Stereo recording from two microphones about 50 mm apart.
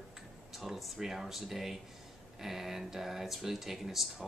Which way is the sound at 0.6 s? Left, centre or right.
Centre.